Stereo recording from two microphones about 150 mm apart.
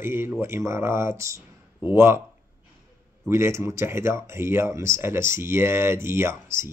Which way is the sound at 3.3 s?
20° right (ahead or behind).